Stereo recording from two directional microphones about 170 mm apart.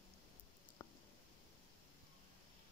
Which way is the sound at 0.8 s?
15° left (ahead or behind).